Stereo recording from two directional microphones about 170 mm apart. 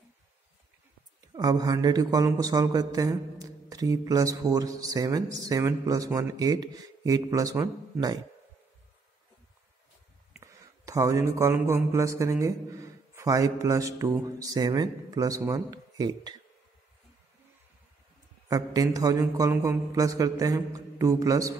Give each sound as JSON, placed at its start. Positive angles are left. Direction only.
{"t": 1.3, "sound": "speech", "side_deg": -20}
{"t": 10.4, "sound": "speech", "side_deg": -20}
{"t": 18.5, "sound": "speech", "side_deg": -20}